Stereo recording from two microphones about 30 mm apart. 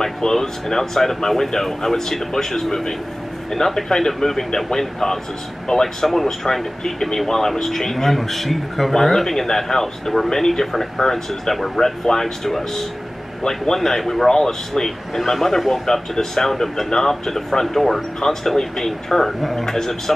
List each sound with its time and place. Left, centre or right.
0.0 s speech: centre
13.7 s speech: centre